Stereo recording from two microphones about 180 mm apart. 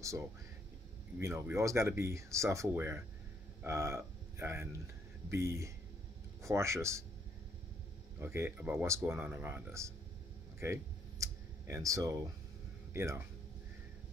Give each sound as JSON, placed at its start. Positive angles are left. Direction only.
{"t": 0.0, "sound": "speech", "side_deg": -15}
{"t": 8.2, "sound": "speech", "side_deg": -15}
{"t": 10.6, "sound": "a sound", "side_deg": -15}
{"t": 12.9, "sound": "speech", "side_deg": -15}